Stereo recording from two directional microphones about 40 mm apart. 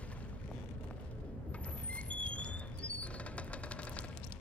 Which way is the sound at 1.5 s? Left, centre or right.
Left.